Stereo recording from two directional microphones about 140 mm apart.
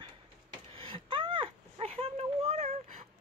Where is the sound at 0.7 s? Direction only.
35° right (ahead or behind).